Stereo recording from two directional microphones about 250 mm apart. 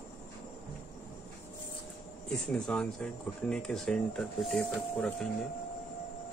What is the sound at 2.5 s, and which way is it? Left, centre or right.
Speech, centre.